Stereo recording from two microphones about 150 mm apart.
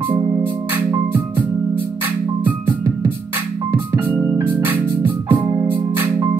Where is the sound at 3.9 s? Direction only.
15° right (ahead or behind).